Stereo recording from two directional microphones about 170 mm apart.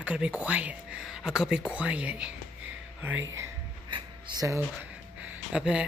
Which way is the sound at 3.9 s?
25° right (ahead or behind).